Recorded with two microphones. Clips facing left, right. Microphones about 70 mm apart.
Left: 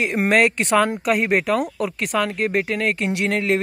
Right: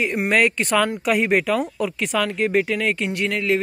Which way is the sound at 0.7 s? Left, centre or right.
Left.